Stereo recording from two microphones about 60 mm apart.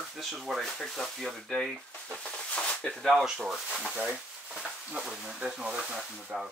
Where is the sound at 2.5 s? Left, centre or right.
Centre.